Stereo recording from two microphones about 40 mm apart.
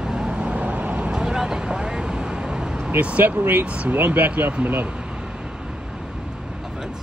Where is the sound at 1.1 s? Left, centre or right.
Centre.